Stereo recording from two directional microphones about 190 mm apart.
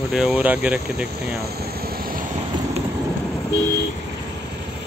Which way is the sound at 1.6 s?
50° right (ahead or behind).